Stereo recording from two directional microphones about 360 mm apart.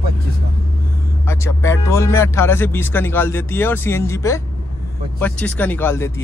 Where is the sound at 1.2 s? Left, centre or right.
Centre.